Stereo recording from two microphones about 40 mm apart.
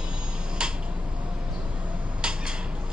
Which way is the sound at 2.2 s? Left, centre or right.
Right.